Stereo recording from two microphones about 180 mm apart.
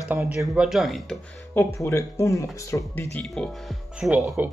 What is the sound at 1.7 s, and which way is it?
Speech, 15° left (ahead or behind).